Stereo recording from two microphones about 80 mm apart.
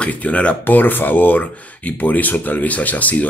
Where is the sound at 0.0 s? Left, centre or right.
Centre.